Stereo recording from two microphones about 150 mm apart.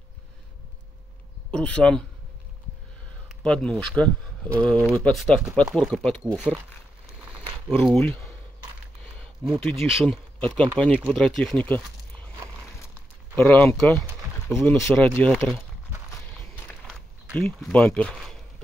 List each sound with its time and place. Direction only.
1.5 s speech: 5° left (ahead or behind)
3.3 s a sound: 5° left (ahead or behind)
3.8 s speech: 10° left (ahead or behind)
7.2 s a sound: 10° right (ahead or behind)
7.8 s speech: 5° left (ahead or behind)
9.4 s speech: 5° left (ahead or behind)
13.4 s speech: 15° left (ahead or behind)
14.5 s speech: 15° left (ahead or behind)
16.8 s speech: centre (ahead or behind)